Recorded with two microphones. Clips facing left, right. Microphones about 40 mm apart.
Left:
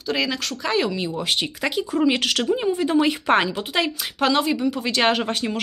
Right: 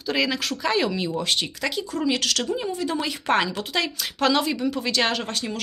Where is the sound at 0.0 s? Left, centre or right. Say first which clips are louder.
Even; centre.